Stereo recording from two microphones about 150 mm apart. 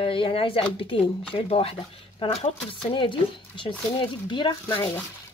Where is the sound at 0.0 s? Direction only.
35° left (ahead or behind).